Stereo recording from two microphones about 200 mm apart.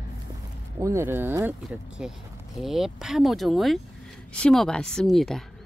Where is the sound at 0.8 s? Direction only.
15° right (ahead or behind).